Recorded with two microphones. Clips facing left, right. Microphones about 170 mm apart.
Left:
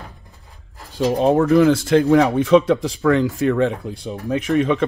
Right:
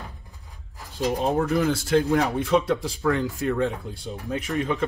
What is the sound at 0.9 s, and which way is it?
Speech, 80° left.